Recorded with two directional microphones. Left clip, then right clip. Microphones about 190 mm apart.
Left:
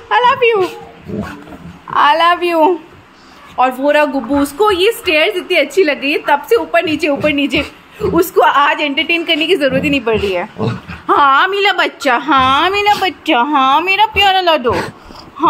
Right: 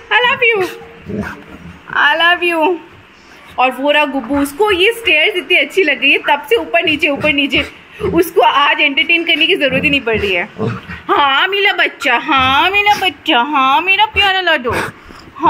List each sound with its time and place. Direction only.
0.1 s a sound: 10° left (ahead or behind)
1.9 s a woman's voice: 15° left (ahead or behind)
14.6 s speech: centre (ahead or behind)